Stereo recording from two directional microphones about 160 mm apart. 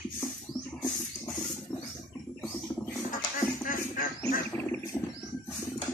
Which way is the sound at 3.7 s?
60° left (ahead or behind).